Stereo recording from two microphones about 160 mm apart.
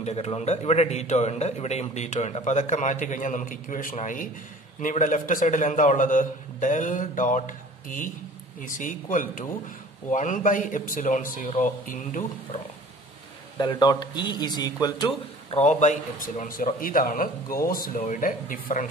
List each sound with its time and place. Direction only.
0.0 s a man's voice: 40° left (ahead or behind)
13.6 s a man's voice: 25° left (ahead or behind)
15.5 s a man's voice: 45° left (ahead or behind)